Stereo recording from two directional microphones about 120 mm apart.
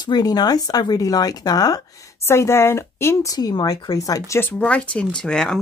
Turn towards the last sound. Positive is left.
turn(degrees=5)  # may be behind; listen again after turning